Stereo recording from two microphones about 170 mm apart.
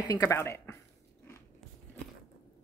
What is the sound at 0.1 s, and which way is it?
Speech, 20° left (ahead or behind).